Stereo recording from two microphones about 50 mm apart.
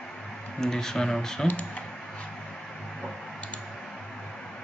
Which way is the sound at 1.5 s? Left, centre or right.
Left.